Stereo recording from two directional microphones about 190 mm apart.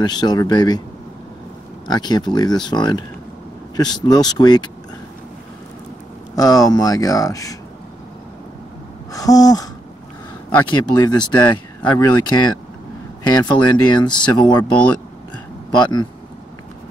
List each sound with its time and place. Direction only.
0.0 s speech: 20° left (ahead or behind)
1.9 s speech: 20° left (ahead or behind)
6.3 s speech: 20° left (ahead or behind)
9.1 s a sound: 20° left (ahead or behind)
10.7 s speech: 25° left (ahead or behind)
13.5 s speech: 25° left (ahead or behind)
14.6 s speech: 5° left (ahead or behind)
15.7 s speech: 25° left (ahead or behind)